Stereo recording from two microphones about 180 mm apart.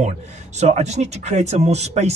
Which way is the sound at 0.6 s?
40° right (ahead or behind).